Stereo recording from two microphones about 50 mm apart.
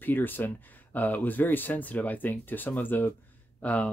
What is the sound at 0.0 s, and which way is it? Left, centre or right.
Speech, left.